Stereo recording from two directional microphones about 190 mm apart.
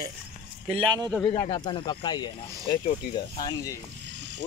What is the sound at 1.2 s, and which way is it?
Speech, 25° left (ahead or behind).